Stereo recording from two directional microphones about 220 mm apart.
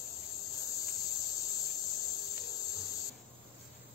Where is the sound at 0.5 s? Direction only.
15° left (ahead or behind).